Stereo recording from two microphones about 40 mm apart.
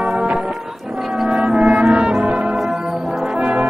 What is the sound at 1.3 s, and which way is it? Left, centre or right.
Music, right.